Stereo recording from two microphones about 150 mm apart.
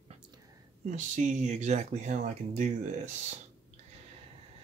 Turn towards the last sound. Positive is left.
turn(degrees=-55)  # may be behind; listen again after turning